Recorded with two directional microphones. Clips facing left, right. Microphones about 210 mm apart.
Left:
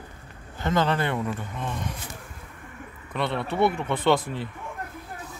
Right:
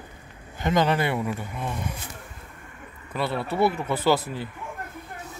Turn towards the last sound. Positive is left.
turn(degrees=-5)  # may be behind; listen again after turning